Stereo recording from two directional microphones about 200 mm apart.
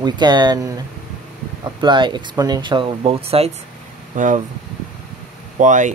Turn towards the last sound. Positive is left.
turn(degrees=-40)  # may be behind; listen again after turning